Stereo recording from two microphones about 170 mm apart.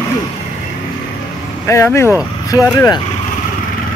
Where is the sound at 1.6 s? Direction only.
15° left (ahead or behind).